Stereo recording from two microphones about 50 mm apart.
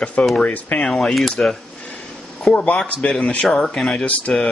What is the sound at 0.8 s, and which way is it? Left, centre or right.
Speech, centre.